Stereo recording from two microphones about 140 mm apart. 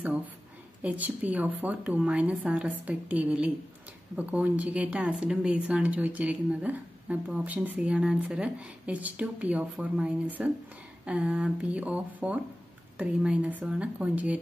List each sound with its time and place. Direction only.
0.8 s a woman's voice: 10° right (ahead or behind)